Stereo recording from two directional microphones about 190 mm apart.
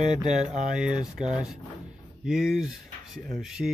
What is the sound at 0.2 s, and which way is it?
Speech, 5° right (ahead or behind).